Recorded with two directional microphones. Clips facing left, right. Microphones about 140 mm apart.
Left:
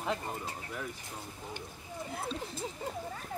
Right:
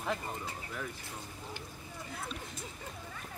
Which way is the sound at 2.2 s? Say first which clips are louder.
Left 5 dB; 30° left (ahead or behind).